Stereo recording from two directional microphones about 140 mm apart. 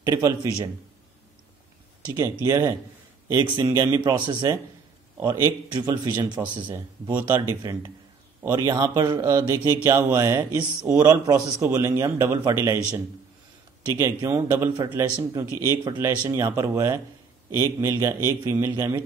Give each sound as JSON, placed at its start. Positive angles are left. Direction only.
{"t": 0.0, "sound": "speech", "side_deg": -30}
{"t": 2.0, "sound": "a man's voice", "side_deg": -30}
{"t": 13.9, "sound": "a man's voice", "side_deg": -20}